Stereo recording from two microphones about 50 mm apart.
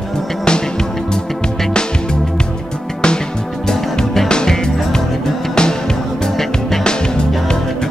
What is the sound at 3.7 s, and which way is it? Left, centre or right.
Music, centre.